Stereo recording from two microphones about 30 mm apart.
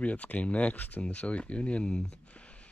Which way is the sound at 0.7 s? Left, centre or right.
Left.